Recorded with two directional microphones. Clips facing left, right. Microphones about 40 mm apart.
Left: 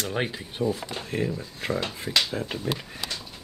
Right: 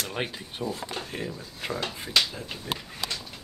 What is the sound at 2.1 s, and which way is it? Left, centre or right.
Speech, left.